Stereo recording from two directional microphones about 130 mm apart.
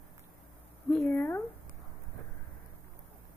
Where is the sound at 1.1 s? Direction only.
15° left (ahead or behind).